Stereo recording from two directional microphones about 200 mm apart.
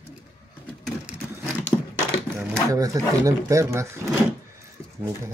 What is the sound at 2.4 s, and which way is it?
Speech, 15° right (ahead or behind).